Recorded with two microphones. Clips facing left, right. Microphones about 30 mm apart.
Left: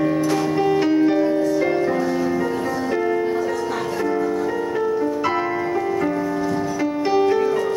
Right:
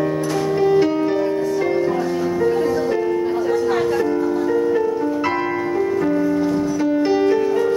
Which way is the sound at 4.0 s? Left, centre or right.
Centre.